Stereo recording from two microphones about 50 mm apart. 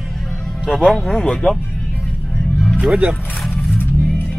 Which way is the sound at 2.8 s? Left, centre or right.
Right.